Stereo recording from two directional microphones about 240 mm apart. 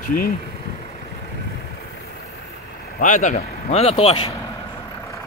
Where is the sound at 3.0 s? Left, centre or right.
Left.